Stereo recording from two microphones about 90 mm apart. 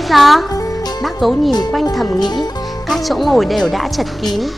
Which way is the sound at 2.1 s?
55° left (ahead or behind).